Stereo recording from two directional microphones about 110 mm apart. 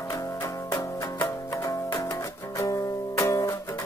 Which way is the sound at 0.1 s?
30° left (ahead or behind).